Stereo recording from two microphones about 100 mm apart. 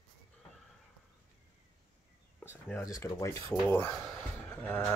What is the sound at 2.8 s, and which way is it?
Speech, 35° left (ahead or behind).